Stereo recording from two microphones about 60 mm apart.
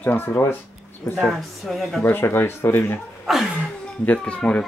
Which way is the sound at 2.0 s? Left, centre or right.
Left.